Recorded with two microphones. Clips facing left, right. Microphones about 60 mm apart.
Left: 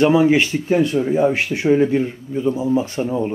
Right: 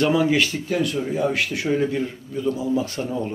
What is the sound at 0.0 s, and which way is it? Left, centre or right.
Speech, left.